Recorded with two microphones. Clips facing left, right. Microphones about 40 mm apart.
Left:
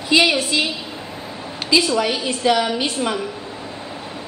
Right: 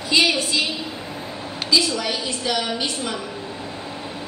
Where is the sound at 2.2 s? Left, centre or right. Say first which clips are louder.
Left 6 dB; left.